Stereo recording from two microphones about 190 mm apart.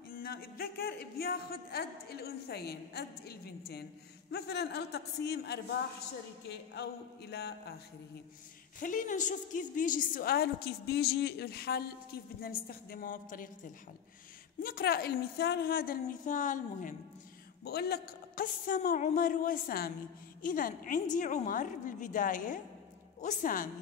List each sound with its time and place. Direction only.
0.1 s speech: 50° left (ahead or behind)
8.7 s a woman's voice: 45° left (ahead or behind)
14.6 s a woman's voice: 50° left (ahead or behind)
17.6 s a woman's voice: 55° left (ahead or behind)